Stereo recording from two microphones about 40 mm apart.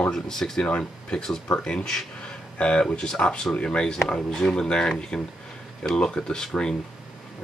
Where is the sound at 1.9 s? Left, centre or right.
Centre.